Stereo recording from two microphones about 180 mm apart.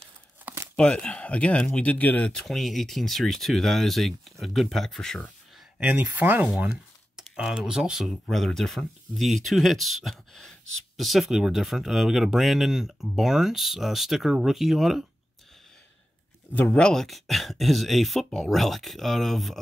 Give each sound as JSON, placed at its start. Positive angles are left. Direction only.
{"t": 0.7, "sound": "speech", "side_deg": 5}
{"t": 5.8, "sound": "speech", "side_deg": -10}
{"t": 16.5, "sound": "speech", "side_deg": 5}